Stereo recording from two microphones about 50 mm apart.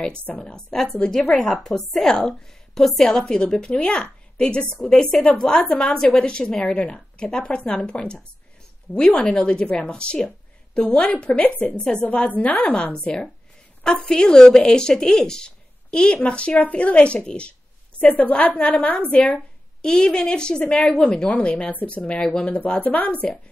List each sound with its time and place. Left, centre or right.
0.4 s a woman's voice: centre
12.9 s a woman's voice: centre; by 23.3 s left